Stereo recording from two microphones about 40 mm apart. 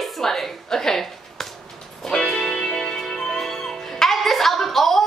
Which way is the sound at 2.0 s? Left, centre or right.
Centre.